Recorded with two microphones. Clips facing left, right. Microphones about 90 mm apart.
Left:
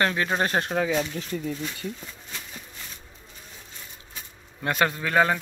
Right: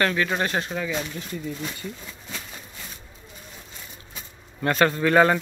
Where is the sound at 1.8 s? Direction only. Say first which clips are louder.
Left 2 dB; 90° right.